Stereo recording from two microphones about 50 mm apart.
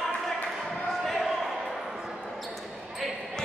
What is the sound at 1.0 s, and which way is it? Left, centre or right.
Basketball bounce, centre.